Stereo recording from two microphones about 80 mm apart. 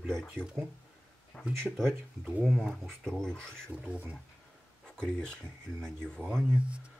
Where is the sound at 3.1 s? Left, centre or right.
Centre.